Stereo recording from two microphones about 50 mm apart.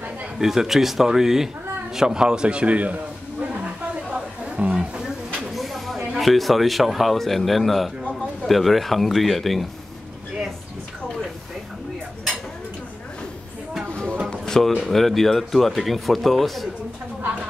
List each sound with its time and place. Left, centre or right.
0.4 s a man's voice: centre; by 3.6 s right
4.1 s chatter: right
4.7 s a sound: centre
5.5 s speech: centre
14.3 s music: centre
14.9 s speech: centre